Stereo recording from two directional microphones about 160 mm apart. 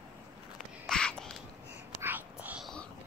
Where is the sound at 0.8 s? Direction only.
5° left (ahead or behind).